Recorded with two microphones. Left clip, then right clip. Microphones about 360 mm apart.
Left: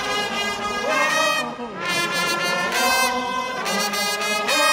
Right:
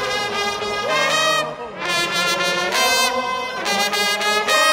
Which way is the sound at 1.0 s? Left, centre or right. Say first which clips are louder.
Right 3 dB; centre.